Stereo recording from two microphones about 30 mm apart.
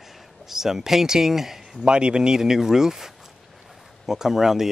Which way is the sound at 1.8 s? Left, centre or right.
Right.